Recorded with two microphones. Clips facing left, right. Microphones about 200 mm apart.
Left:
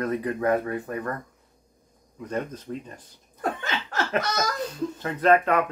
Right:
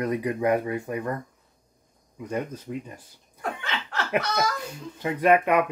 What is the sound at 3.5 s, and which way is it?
Laughter, 40° left (ahead or behind).